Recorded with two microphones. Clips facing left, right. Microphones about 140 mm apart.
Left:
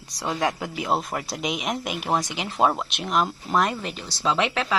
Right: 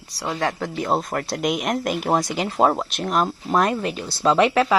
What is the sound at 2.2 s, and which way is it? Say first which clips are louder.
Speech: right 6 dB; 45° right (ahead or behind).